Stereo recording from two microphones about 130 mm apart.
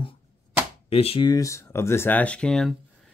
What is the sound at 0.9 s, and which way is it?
Speech, 45° left (ahead or behind).